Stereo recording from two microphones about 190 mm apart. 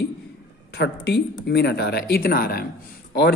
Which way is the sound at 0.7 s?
60° left (ahead or behind).